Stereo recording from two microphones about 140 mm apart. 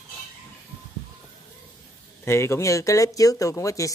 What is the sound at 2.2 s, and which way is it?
Speech, 20° left (ahead or behind).